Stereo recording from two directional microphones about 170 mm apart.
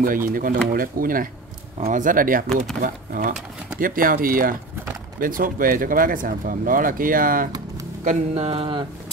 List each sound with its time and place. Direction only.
0.0 s speech: 55° right (ahead or behind)
2.5 s speech: centre (ahead or behind)
2.8 s speech: 55° right (ahead or behind)
8.0 s speech: 40° right (ahead or behind)